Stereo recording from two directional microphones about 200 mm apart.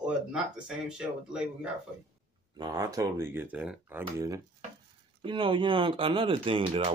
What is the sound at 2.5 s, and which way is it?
Speech, 20° right (ahead or behind).